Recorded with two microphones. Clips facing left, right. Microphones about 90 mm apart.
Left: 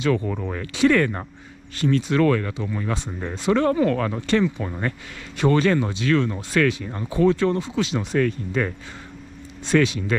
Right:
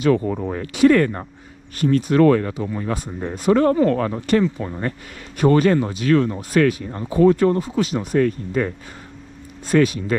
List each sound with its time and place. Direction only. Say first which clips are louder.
0.0 s speech: right 4 dB; 40° right (ahead or behind)
9.7 s speech: right 3 dB; 40° right (ahead or behind)